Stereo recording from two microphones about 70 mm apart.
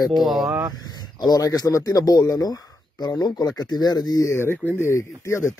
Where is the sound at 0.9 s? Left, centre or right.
Left.